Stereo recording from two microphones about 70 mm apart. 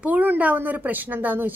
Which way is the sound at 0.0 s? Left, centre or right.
Right.